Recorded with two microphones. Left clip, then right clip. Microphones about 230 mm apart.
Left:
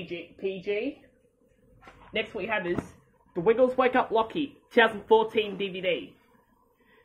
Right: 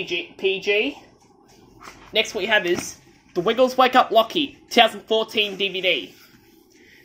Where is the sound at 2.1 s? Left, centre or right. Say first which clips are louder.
Right 10 dB; centre.